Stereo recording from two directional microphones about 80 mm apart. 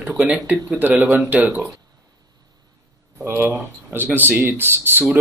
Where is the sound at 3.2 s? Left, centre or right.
Right.